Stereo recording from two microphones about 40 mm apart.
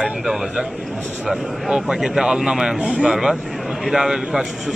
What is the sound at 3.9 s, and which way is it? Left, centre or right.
Speech, centre.